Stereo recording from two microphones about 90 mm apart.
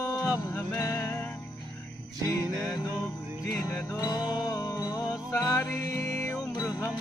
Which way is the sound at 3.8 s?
45° left (ahead or behind).